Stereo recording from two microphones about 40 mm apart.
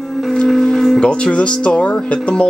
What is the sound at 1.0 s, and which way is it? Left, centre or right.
Speech, left.